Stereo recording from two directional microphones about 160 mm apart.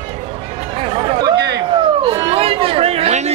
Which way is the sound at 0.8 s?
35° right (ahead or behind).